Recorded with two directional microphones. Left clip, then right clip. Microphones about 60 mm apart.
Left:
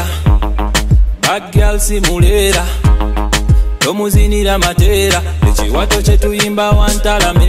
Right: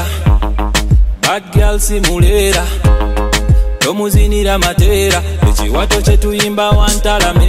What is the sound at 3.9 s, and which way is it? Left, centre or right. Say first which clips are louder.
Music: even; centre.